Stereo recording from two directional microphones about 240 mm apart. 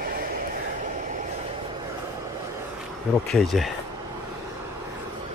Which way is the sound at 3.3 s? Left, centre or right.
Centre.